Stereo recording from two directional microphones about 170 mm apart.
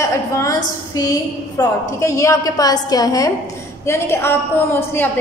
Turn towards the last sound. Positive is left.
turn(degrees=15)  # may be behind; listen again after turning